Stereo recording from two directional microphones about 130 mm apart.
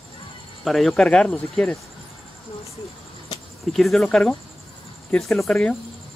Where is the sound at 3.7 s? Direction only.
Centre (ahead or behind).